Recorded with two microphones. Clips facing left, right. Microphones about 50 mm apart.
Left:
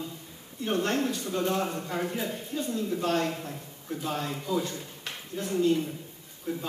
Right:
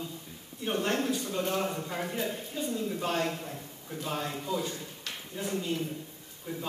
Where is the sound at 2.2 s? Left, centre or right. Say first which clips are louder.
Left 1 dB; centre.